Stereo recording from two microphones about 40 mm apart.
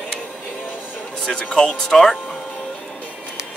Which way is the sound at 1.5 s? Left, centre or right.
Left.